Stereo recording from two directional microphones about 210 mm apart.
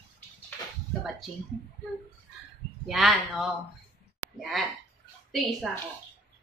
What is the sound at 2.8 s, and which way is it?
Speech, centre (ahead or behind).